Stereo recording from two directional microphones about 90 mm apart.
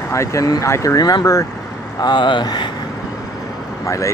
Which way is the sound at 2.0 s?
55° left (ahead or behind).